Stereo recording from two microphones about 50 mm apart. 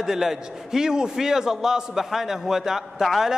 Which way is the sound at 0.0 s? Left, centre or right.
Centre.